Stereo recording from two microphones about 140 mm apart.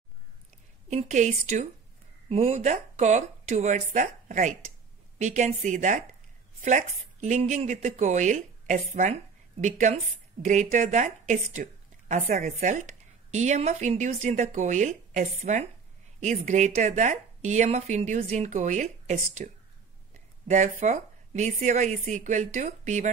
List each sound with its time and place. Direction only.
0.8 s speech: 55° right (ahead or behind)
19.4 s speech: 65° right (ahead or behind)
20.4 s speech: 55° right (ahead or behind)